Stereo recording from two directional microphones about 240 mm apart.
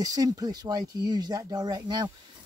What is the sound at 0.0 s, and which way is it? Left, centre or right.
Speech, centre.